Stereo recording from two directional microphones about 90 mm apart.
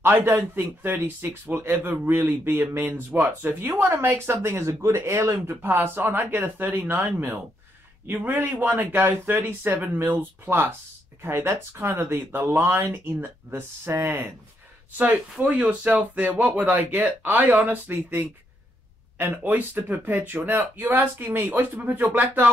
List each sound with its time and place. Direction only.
0.0 s speech: 25° right (ahead or behind)